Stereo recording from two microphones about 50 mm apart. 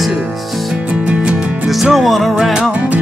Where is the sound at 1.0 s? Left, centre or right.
Right.